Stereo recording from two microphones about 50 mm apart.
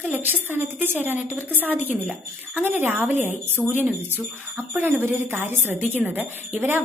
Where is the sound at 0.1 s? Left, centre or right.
Right.